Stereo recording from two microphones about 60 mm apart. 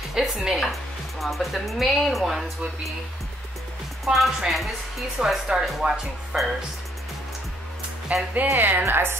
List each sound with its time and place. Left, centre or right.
0.1 s speech: centre
4.0 s speech: centre
8.1 s speech: right
8.5 s a woman's voice: right